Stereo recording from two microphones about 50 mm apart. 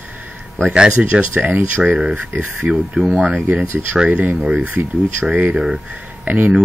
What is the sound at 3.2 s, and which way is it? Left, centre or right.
Speech, right.